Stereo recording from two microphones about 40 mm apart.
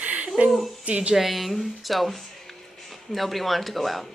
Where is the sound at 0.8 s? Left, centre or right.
Right.